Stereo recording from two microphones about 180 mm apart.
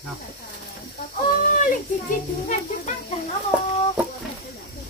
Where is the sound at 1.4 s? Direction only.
50° left (ahead or behind).